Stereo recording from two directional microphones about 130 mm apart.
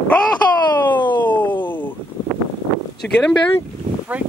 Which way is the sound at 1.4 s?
15° left (ahead or behind).